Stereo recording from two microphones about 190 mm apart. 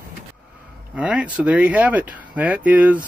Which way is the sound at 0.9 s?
5° right (ahead or behind).